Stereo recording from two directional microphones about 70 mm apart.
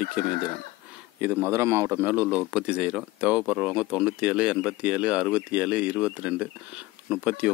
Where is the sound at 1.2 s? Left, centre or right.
Right.